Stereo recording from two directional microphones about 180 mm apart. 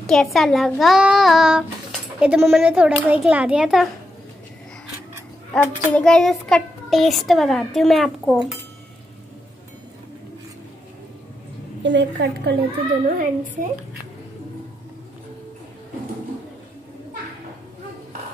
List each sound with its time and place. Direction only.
0.0 s a child's voice: centre (ahead or behind)
5.5 s a child's voice: 5° left (ahead or behind)
11.8 s a woman's voice: 80° right
13.1 s a child's voice: 50° right (ahead or behind)